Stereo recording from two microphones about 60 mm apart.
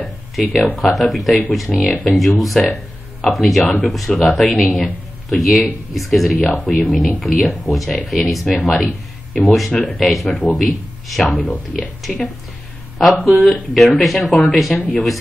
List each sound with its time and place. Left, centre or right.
0.0 s a sound: centre
0.7 s speech: centre
11.3 s speech: left
12.0 s speech: centre